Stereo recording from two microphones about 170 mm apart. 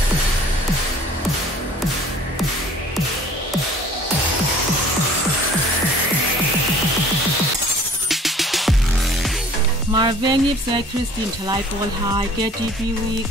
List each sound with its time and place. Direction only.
8.1 s music: centre (ahead or behind)
9.9 s music: 25° right (ahead or behind)